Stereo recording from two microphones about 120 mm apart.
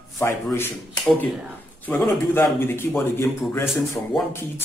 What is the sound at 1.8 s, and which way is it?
A man's voice, 20° left (ahead or behind).